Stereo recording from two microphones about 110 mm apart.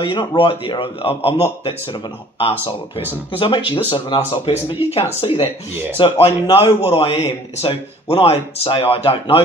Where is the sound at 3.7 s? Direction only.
45° left (ahead or behind).